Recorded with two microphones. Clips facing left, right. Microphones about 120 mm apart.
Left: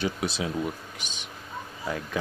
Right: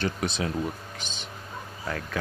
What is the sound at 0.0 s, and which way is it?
Speech, 5° left (ahead or behind).